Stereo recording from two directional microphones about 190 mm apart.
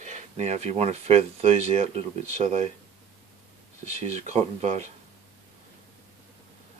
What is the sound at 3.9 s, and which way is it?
Speech, 35° right (ahead or behind).